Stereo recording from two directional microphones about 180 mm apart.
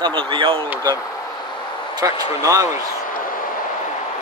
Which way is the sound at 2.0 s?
20° right (ahead or behind).